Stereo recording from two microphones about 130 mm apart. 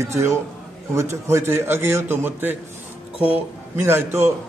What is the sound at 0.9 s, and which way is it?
A man's voice, 20° right (ahead or behind).